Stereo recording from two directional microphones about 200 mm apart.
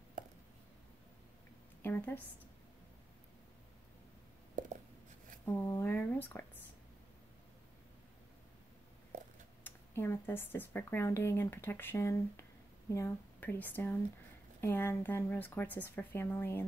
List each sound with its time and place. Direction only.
1.8 s a woman's voice: 10° left (ahead or behind)
4.6 s writing: 40° right (ahead or behind)
5.4 s speech: 10° left (ahead or behind)
9.6 s speech: 10° left (ahead or behind)